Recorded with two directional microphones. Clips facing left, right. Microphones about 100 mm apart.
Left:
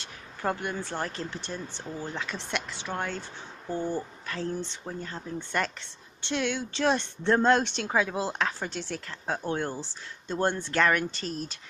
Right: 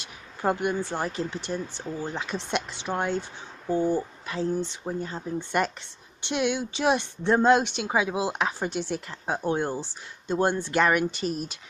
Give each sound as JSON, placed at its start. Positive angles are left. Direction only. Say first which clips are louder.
{"t": 0.0, "sound": "speech", "louder": "right 4 dB", "side_deg": -15}